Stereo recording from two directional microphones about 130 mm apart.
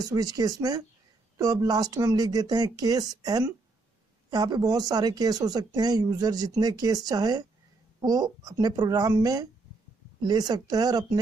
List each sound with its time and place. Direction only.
0.0 s speech: 30° right (ahead or behind)